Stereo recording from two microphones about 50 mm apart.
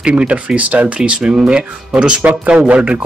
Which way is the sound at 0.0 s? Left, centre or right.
Right.